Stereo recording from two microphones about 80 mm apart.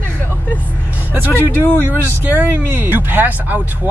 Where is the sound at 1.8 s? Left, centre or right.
Right.